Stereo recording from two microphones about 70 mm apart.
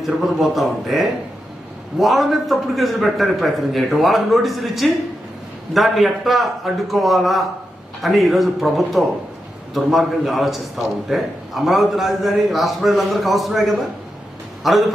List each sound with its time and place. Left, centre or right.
0.0 s a man's voice: centre